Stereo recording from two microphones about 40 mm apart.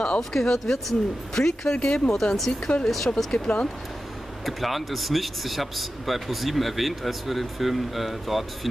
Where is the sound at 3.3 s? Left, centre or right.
Left.